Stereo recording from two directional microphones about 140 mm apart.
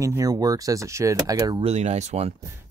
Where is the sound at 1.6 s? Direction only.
50° right (ahead or behind).